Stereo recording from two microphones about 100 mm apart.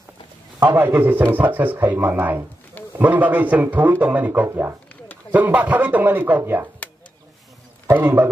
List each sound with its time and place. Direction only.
0.7 s a man's voice: 20° right (ahead or behind)
7.9 s speech: 25° right (ahead or behind)